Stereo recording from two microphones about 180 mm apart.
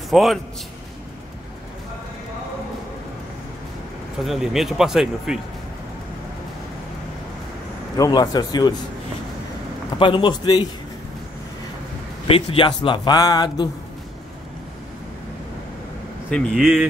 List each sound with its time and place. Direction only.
0.1 s a man's voice: centre (ahead or behind)
4.2 s speech: centre (ahead or behind)
8.0 s speech: 20° left (ahead or behind)
9.9 s speech: 25° left (ahead or behind)
12.3 s speech: 30° left (ahead or behind)
16.3 s speech: 5° left (ahead or behind)